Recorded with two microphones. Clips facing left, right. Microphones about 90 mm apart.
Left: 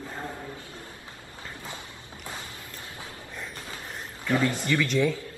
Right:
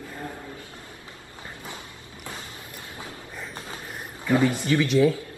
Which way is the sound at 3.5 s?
20° right (ahead or behind).